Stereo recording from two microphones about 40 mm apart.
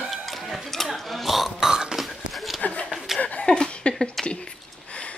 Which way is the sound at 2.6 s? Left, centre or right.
Left.